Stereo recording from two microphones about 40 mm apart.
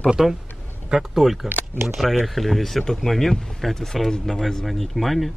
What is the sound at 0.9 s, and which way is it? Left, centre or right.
Speech, centre.